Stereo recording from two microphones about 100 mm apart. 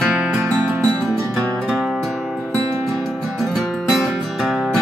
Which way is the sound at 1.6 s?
Centre (ahead or behind).